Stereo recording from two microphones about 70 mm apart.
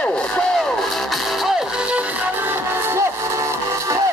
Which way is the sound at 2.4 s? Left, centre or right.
Right.